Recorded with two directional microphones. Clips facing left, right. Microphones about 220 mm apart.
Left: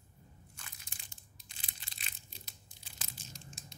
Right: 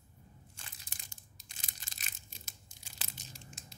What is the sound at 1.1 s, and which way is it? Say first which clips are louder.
Tearing: right 1 dB; 45° right (ahead or behind).